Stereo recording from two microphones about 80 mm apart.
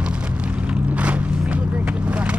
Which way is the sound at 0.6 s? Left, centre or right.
Centre.